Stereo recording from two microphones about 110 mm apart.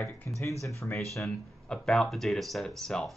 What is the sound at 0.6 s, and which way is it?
Speech, 25° left (ahead or behind).